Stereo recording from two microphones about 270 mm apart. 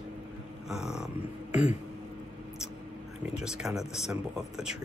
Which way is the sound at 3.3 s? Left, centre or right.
Centre.